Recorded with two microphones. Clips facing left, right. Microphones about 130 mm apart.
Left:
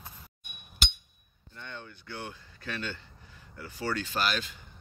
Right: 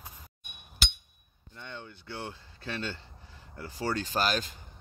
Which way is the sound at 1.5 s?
20° right (ahead or behind).